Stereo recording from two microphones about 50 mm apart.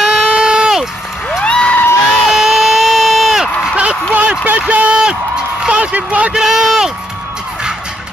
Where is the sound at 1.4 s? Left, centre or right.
Left.